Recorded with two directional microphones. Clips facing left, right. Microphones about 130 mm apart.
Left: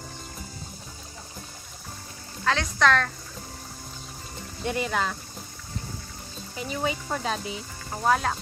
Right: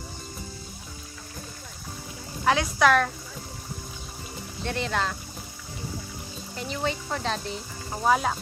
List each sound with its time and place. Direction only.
2.4 s a woman's voice: 10° right (ahead or behind)
4.6 s speech: 10° left (ahead or behind)
6.5 s speech: 5° left (ahead or behind)